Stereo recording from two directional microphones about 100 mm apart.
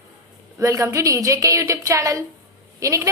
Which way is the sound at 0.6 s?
30° right (ahead or behind).